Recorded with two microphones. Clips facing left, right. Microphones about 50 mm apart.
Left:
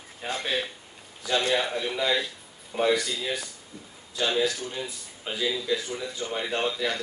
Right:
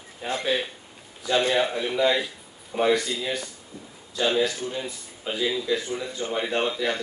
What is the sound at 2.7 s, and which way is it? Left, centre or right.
Speech, centre.